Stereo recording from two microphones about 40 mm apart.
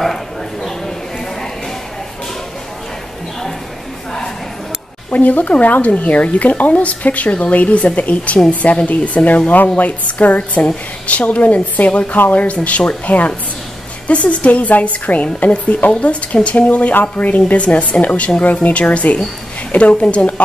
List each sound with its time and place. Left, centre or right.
5.1 s speech: left
17.6 s a woman's voice: left